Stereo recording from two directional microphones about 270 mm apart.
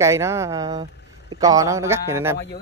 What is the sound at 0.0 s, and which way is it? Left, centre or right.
Speech, centre.